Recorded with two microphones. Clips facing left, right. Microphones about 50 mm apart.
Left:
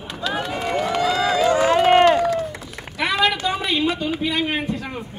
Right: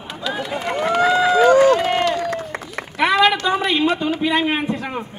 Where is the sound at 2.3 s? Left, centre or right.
Right.